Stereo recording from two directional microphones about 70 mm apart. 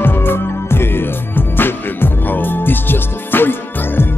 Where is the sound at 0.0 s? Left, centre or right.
Left.